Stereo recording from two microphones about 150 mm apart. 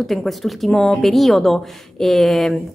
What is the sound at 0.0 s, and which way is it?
Speech, centre (ahead or behind).